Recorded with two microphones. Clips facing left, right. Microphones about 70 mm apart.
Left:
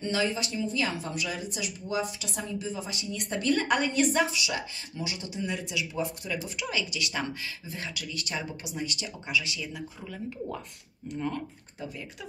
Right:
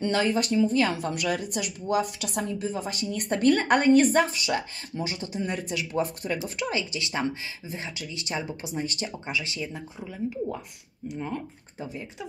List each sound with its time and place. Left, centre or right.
0.0 s a woman's voice: right
6.5 s speech: right
9.9 s speech: centre
11.8 s speech: right